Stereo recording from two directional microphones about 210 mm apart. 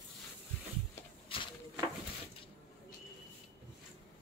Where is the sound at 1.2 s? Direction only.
25° left (ahead or behind).